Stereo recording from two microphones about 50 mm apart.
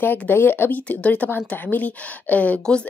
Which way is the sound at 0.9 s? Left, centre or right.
Left.